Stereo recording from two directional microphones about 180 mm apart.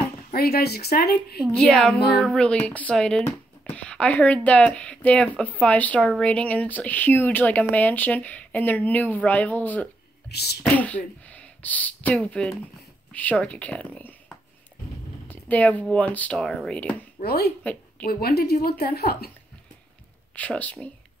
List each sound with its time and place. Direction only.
0.3 s a woman's voice: 60° left (ahead or behind)
1.4 s speech: centre (ahead or behind)
10.3 s a woman's voice: 65° left (ahead or behind)
10.6 s speech: 5° left (ahead or behind)
17.2 s a woman's voice: 60° left (ahead or behind)
20.3 s speech: 10° left (ahead or behind)